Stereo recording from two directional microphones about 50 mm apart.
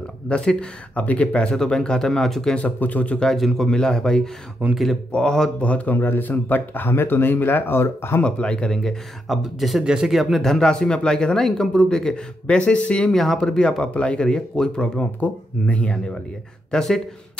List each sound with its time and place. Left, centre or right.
0.3 s speech: left
1.5 s speech: centre
2.5 s speech: left
3.3 s speech: centre
4.6 s speech: right
5.1 s speech: centre
5.6 s speech: left
5.9 s speech: left
8.2 s speech: left
9.4 s speech: centre
10.4 s speech: centre
13.1 s speech: centre
15.0 s speech: left
16.7 s speech: centre